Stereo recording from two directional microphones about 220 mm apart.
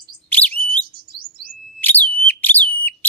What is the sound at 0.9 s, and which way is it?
Bird, 45° right (ahead or behind).